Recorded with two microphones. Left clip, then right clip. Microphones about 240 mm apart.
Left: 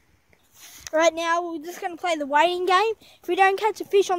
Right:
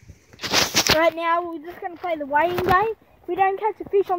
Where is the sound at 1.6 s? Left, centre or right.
Centre.